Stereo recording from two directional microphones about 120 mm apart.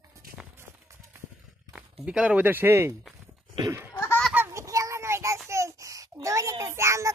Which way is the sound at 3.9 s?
20° left (ahead or behind).